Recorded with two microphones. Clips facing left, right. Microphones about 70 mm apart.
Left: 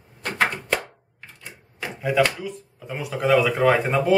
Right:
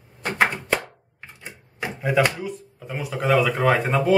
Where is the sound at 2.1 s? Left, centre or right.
Centre.